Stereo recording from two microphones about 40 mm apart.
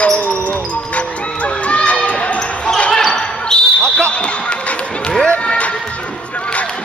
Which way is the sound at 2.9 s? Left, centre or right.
Centre.